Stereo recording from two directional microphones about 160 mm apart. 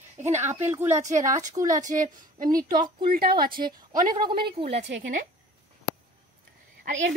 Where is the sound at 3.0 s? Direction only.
70° right (ahead or behind).